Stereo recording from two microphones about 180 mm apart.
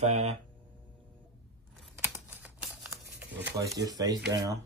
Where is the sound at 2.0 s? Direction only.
10° right (ahead or behind).